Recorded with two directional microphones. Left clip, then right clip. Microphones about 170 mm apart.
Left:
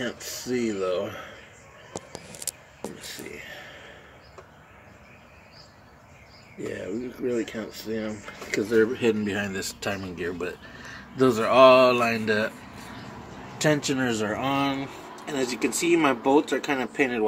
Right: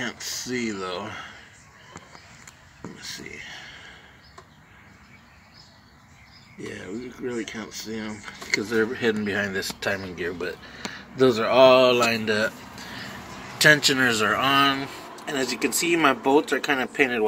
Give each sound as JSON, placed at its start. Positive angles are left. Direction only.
{"t": 0.0, "sound": "speech", "side_deg": -20}
{"t": 3.1, "sound": "speech", "side_deg": -15}
{"t": 6.7, "sound": "speech", "side_deg": -15}
{"t": 9.0, "sound": "speech", "side_deg": 10}
{"t": 11.1, "sound": "speech", "side_deg": 5}
{"t": 13.6, "sound": "speech", "side_deg": 5}